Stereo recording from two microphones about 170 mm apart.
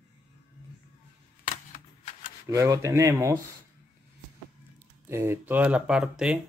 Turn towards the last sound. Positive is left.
turn(degrees=-5)  # may be behind; listen again after turning